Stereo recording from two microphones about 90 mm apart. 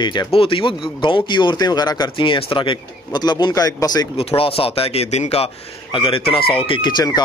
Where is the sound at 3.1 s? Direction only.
50° left (ahead or behind).